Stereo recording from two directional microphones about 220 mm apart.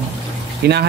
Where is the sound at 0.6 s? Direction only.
45° right (ahead or behind).